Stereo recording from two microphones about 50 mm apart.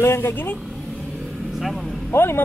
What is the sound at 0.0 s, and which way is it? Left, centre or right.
Speech, left.